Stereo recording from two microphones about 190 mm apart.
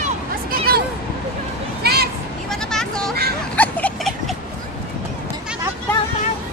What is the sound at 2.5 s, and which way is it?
Vehicle, 5° left (ahead or behind).